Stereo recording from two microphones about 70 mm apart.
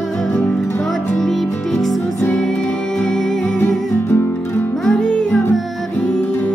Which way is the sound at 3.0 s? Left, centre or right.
Centre.